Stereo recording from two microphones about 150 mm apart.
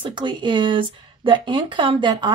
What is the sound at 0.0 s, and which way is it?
Speech, 30° right (ahead or behind).